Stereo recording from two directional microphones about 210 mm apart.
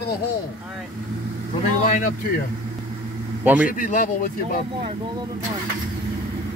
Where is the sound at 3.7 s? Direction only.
40° left (ahead or behind).